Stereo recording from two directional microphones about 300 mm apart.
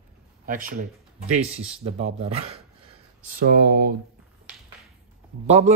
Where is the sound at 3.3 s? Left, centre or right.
Right.